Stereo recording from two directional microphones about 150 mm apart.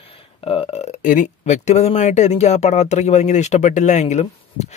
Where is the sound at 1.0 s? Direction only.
55° left (ahead or behind).